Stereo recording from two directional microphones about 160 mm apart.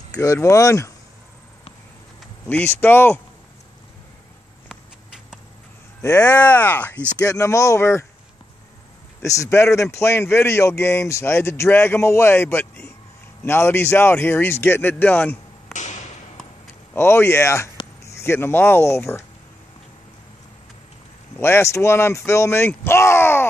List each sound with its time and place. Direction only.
0.2 s speech: 20° left (ahead or behind)
2.4 s a man's voice: 10° left (ahead or behind)
6.2 s a man's voice: 10° left (ahead or behind)
9.2 s a man's voice: 20° left (ahead or behind)
15.7 s a sound: 50° left (ahead or behind)
16.9 s a man's voice: 15° left (ahead or behind)
21.4 s a man's voice: 15° left (ahead or behind)